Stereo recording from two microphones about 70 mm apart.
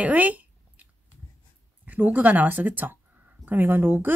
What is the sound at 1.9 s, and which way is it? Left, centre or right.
Speech, right.